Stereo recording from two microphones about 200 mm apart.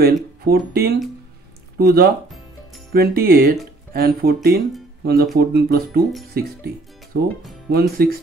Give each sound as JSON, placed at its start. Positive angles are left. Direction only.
{"t": 0.0, "sound": "speech", "side_deg": -50}